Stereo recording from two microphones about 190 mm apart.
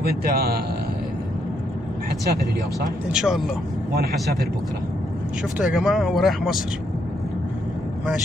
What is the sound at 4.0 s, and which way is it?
Speech, 55° right (ahead or behind).